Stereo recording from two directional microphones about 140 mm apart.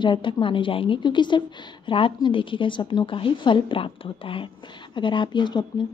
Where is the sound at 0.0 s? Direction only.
35° left (ahead or behind).